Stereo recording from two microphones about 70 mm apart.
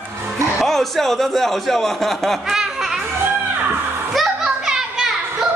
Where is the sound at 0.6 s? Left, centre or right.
Centre.